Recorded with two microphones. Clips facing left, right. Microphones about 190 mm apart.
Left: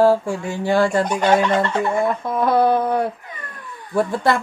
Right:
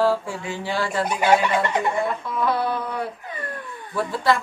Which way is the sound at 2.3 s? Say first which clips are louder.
Left 7 dB; 45° left (ahead or behind).